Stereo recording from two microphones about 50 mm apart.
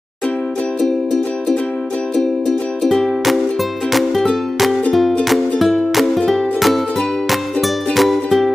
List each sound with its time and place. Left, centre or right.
2.4 s music: centre
5.3 s music: centre